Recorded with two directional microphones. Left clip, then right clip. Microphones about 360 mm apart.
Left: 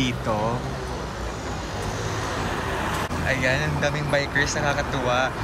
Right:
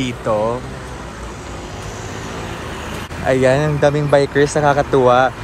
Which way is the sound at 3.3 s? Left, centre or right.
Centre.